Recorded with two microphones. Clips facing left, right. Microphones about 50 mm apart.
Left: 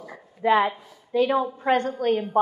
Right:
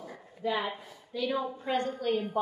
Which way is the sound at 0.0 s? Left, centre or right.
Left.